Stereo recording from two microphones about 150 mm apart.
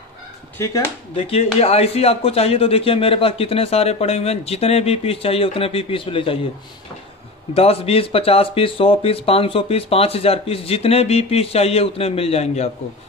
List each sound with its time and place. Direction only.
0.6 s speech: 20° left (ahead or behind)
1.1 s a man's voice: 40° left (ahead or behind)
7.5 s a man's voice: 40° left (ahead or behind)